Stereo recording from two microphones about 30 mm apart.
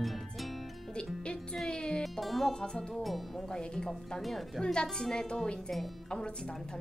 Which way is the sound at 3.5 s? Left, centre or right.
Left.